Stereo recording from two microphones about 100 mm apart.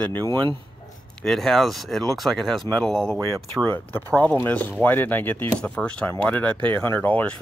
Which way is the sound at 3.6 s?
20° left (ahead or behind).